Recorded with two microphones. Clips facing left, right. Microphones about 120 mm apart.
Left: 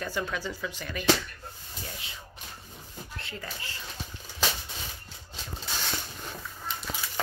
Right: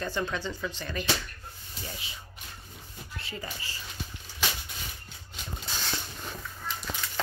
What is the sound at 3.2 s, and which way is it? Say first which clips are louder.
Speech: right 2 dB; 5° right (ahead or behind).